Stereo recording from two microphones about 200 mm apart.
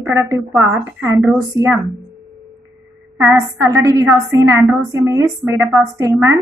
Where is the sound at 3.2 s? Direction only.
15° right (ahead or behind).